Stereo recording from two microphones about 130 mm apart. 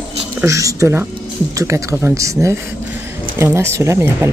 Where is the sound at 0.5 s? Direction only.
25° right (ahead or behind).